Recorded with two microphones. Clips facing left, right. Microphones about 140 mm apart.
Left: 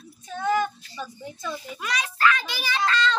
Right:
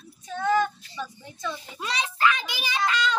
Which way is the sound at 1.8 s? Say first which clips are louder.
Even; 25° right (ahead or behind).